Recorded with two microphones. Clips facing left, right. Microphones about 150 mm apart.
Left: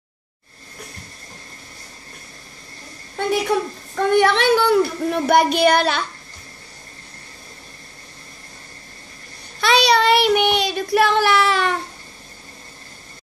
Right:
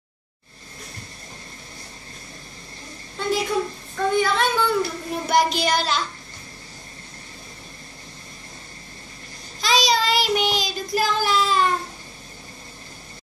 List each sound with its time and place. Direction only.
3.2 s a woman's voice: 60° left (ahead or behind)
4.1 s speech: 70° left (ahead or behind)
9.6 s child singing: 65° left (ahead or behind)